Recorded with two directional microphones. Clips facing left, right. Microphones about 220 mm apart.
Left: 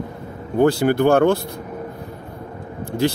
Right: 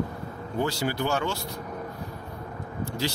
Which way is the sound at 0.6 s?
55° left (ahead or behind).